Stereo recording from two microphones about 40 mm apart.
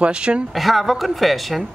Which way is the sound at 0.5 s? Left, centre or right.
Centre.